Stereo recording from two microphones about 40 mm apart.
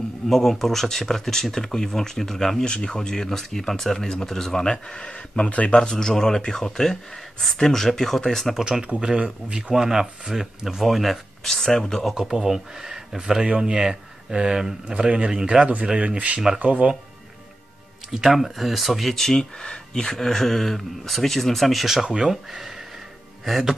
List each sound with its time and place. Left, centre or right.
0.3 s speech: centre
2.6 s speech: left
3.3 s speech: centre
5.1 s speech: left
5.8 s speech: centre
8.8 s speech: right
10.8 s speech: centre
11.4 s speech: centre
12.2 s speech: centre; by 16.9 s right
18.3 s speech: centre
19.2 s speech: centre
22.0 s speech: centre